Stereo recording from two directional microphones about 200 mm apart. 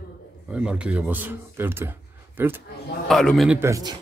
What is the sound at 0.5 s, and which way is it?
A man's voice, 5° right (ahead or behind).